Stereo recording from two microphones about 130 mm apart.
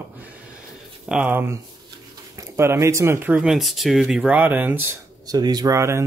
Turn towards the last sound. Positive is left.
turn(degrees=-20)  # may be behind; listen again after turning